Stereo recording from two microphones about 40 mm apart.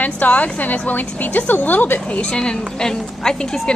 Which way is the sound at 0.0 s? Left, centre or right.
Left.